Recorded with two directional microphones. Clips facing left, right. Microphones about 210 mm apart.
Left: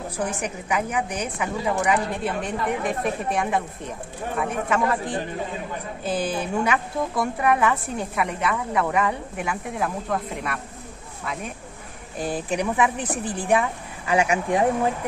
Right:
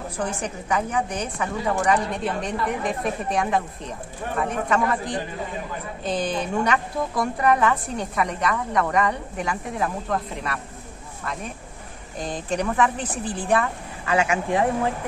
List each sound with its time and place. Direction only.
0.2 s a woman's voice: 10° left (ahead or behind)
12.2 s a woman's voice: 5° left (ahead or behind)